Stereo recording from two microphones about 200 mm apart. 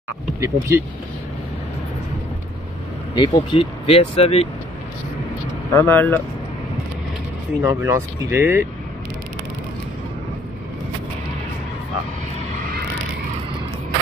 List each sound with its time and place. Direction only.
0.4 s speech: 15° right (ahead or behind)
3.2 s speech: 25° left (ahead or behind)
5.8 s speech: 10° left (ahead or behind)
7.6 s speech: 15° right (ahead or behind)